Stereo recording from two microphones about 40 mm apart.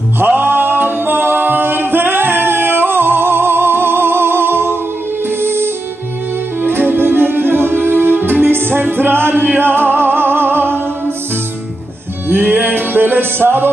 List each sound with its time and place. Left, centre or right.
0.2 s music: right
1.1 s singing: right
5.4 s music: right
6.6 s music: right
12.3 s music: right